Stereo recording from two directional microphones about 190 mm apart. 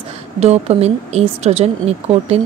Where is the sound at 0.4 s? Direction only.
35° right (ahead or behind).